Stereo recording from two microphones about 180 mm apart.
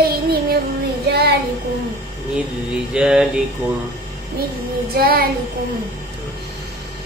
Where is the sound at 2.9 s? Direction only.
5° right (ahead or behind).